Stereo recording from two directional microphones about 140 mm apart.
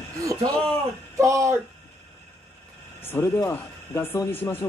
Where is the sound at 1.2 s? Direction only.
25° right (ahead or behind).